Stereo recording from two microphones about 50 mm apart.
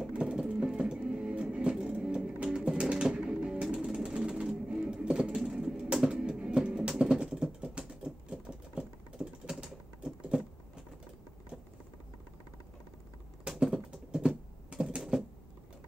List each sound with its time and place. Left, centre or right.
0.1 s music: centre
2.8 s a sound: centre
3.7 s sewing machine: centre
6.1 s music: centre
7.7 s typing: centre
13.5 s typing: centre